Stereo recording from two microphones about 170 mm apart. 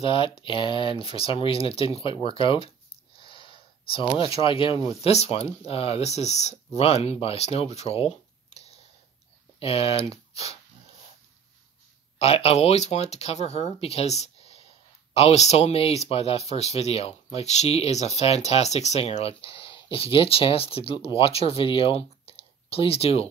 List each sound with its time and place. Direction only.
0.0 s speech: 30° left (ahead or behind)
3.2 s a sound: 30° left (ahead or behind)
4.2 s speech: 35° left (ahead or behind)
9.6 s speech: 35° left (ahead or behind)
12.2 s speech: 35° left (ahead or behind)